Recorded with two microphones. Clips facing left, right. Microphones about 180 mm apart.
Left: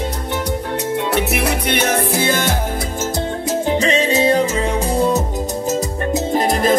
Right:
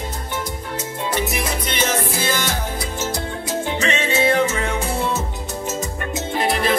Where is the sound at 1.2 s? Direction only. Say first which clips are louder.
Left 5 dB; 65° left (ahead or behind).